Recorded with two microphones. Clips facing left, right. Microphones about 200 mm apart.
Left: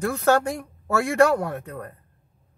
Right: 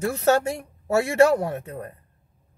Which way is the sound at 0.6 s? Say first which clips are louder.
Right 2 dB; 25° right (ahead or behind).